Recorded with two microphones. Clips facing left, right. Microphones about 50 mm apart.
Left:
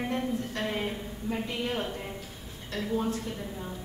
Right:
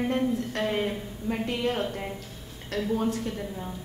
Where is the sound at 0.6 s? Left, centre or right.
Right.